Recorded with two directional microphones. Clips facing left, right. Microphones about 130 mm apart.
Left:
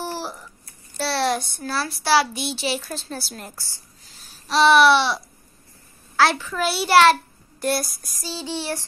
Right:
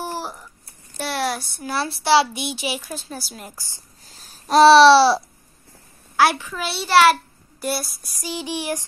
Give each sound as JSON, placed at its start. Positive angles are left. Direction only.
{"t": 0.0, "sound": "a sound", "side_deg": -15}
{"t": 0.9, "sound": "a child's voice", "side_deg": -15}
{"t": 1.7, "sound": "a child's voice", "side_deg": -25}
{"t": 4.2, "sound": "babbling", "side_deg": -40}
{"t": 6.1, "sound": "a child's voice", "side_deg": -15}
{"t": 6.5, "sound": "a sound", "side_deg": 0}
{"t": 8.2, "sound": "a child's voice", "side_deg": -15}